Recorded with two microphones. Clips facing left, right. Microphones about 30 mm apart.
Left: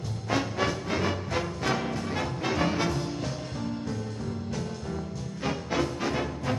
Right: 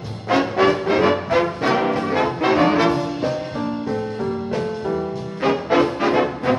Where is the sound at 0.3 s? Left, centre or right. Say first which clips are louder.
Right 11 dB; right.